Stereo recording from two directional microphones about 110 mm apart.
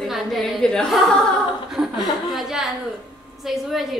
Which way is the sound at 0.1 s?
Centre (ahead or behind).